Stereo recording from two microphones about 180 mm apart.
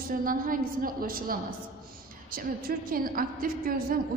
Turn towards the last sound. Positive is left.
turn(degrees=-50)  # may be behind; listen again after turning